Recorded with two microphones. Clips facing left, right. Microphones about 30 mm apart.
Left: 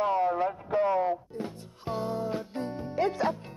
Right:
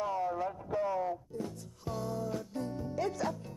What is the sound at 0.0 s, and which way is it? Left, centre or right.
Music, left.